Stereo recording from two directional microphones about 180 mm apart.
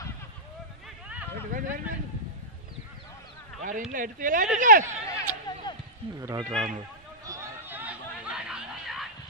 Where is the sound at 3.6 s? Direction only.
50° right (ahead or behind).